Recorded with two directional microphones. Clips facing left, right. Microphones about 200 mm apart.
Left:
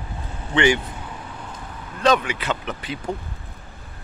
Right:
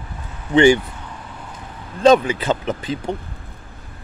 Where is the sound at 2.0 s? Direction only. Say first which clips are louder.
Right 6 dB; 30° right (ahead or behind).